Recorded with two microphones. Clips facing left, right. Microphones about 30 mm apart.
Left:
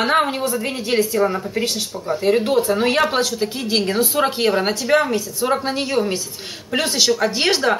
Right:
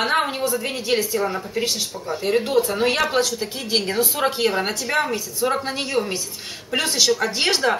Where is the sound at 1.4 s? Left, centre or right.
Centre.